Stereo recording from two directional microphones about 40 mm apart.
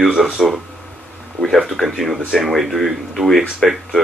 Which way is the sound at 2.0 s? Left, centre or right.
Centre.